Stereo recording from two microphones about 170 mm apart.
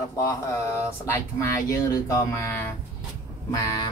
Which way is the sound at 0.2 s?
20° left (ahead or behind).